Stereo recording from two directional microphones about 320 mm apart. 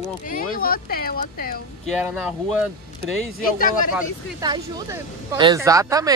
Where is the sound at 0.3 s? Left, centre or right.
Left.